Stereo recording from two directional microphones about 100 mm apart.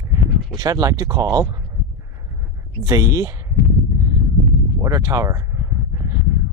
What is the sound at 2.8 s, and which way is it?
Speech, 35° right (ahead or behind).